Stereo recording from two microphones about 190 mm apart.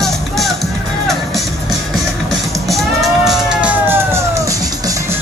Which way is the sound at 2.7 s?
Centre (ahead or behind).